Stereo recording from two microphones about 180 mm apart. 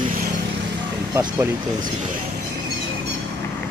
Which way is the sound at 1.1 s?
15° right (ahead or behind).